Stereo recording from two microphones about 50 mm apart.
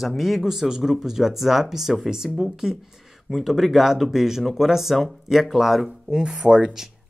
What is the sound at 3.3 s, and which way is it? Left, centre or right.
Speech, centre.